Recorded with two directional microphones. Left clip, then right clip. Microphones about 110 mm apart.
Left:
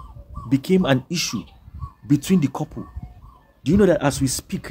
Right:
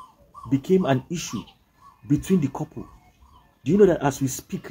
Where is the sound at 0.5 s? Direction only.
25° left (ahead or behind).